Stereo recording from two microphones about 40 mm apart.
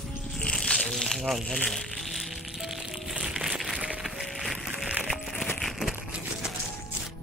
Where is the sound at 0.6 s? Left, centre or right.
Centre.